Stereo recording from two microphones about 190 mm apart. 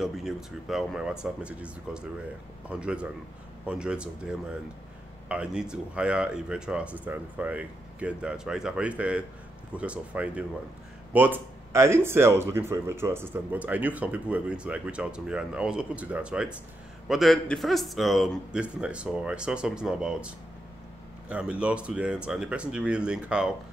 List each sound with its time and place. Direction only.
0.0 s speech: centre (ahead or behind)